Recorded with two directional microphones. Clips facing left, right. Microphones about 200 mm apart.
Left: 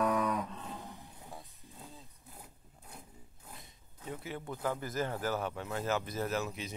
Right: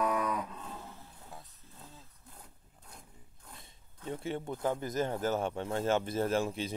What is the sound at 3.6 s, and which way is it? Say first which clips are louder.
Speech: right 3 dB; 30° right (ahead or behind).